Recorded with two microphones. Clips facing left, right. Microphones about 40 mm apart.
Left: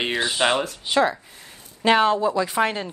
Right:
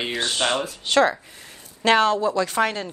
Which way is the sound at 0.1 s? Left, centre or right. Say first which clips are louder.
Left 2 dB; centre.